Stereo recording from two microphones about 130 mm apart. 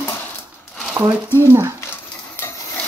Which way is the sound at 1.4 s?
20° right (ahead or behind).